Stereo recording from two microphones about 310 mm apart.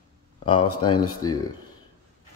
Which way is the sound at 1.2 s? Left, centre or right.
Centre.